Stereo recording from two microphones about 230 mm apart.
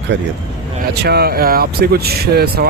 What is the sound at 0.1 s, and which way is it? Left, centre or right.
Speech, right.